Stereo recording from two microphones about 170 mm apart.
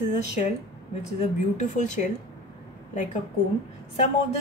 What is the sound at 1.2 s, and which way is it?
Speech, 45° left (ahead or behind).